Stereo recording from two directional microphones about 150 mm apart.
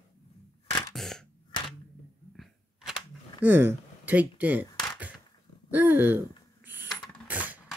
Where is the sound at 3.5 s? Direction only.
15° right (ahead or behind).